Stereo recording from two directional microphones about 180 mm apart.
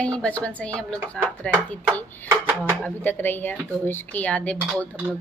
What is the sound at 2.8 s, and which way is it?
Speech, 10° left (ahead or behind).